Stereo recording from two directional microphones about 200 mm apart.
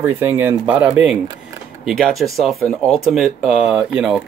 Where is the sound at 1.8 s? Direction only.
Centre (ahead or behind).